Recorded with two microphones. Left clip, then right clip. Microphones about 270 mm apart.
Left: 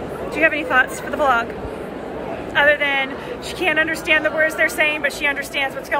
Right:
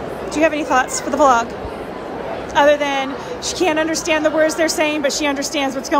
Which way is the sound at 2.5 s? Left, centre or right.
Centre.